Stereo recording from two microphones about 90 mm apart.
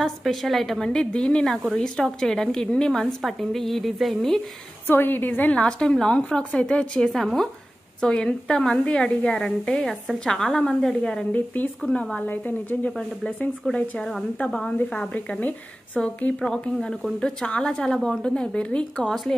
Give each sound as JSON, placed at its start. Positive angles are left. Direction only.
{"t": 0.0, "sound": "a woman's voice", "side_deg": 5}
{"t": 4.8, "sound": "a woman's voice", "side_deg": 25}
{"t": 5.6, "sound": "a woman's voice", "side_deg": 10}
{"t": 11.3, "sound": "a woman's voice", "side_deg": 20}
{"t": 11.8, "sound": "a woman's voice", "side_deg": 10}
{"t": 12.9, "sound": "a woman's voice", "side_deg": 10}